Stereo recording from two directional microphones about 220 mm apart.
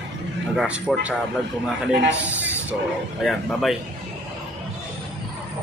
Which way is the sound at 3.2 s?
Centre (ahead or behind).